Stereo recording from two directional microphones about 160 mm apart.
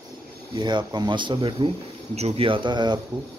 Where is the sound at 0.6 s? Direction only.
30° right (ahead or behind).